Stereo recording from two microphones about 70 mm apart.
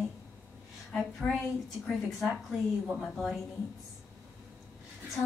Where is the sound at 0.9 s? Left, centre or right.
Centre.